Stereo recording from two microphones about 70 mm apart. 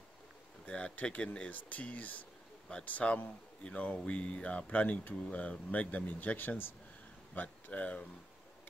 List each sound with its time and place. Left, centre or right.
0.7 s speech: centre